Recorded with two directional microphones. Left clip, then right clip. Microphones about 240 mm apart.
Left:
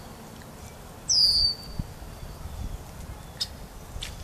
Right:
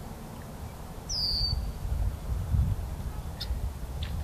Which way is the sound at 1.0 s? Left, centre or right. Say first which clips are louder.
Left 9 dB; right.